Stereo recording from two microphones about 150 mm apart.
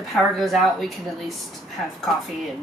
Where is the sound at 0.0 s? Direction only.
Centre (ahead or behind).